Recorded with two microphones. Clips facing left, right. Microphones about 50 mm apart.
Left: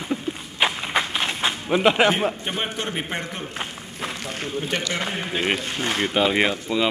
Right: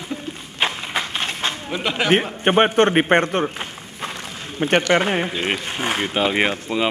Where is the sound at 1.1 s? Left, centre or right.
Centre.